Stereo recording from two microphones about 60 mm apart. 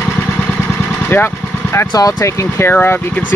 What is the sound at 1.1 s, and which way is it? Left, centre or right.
Speech, left.